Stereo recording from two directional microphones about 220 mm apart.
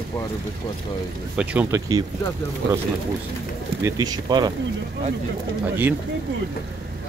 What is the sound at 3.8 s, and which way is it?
Speech, 15° right (ahead or behind).